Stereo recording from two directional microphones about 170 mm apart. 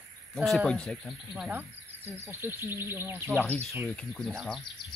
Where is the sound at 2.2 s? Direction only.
15° right (ahead or behind).